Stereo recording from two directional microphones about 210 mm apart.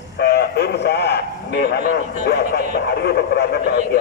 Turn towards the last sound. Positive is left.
turn(degrees=50)  # may be behind; listen again after turning